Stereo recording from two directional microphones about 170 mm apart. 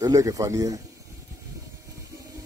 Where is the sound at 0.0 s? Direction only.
20° right (ahead or behind).